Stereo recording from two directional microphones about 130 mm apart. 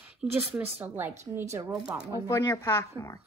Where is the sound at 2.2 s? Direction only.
20° left (ahead or behind).